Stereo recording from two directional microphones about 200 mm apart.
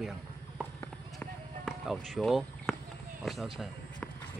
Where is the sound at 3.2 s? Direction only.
Centre (ahead or behind).